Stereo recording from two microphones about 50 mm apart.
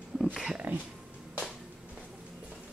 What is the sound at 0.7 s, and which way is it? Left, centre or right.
Speech, right.